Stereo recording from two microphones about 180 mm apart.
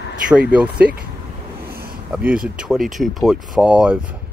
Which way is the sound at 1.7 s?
55° right (ahead or behind).